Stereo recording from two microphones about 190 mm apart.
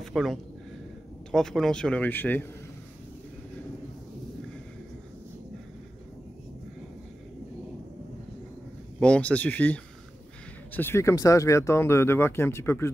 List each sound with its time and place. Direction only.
0.0 s speech: centre (ahead or behind)
9.0 s speech: 5° left (ahead or behind)